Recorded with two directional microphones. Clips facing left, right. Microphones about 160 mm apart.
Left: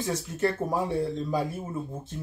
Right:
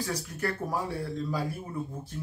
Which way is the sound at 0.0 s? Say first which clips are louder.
Left 5 dB; 25° left (ahead or behind).